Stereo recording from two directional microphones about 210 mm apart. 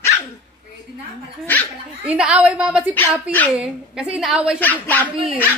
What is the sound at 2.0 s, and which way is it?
Speech, 5° right (ahead or behind).